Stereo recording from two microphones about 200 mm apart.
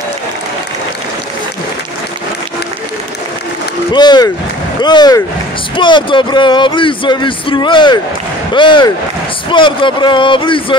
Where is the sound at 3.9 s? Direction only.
20° left (ahead or behind).